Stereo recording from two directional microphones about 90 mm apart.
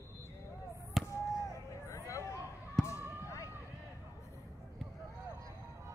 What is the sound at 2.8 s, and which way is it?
Fireworks, 35° left (ahead or behind).